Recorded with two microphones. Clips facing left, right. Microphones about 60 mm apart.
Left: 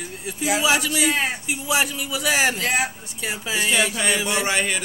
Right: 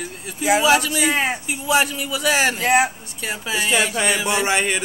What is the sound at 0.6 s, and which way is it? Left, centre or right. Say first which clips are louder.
A man's voice: right 3 dB; centre.